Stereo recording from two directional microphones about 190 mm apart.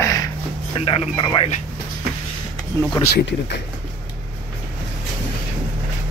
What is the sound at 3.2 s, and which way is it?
Speech, 70° left (ahead or behind).